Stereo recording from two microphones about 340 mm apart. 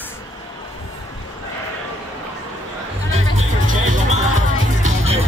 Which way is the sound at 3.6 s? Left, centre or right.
Right.